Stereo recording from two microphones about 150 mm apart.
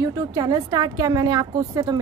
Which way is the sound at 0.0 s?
25° right (ahead or behind).